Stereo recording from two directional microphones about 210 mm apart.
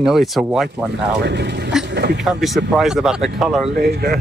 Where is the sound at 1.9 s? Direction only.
55° right (ahead or behind).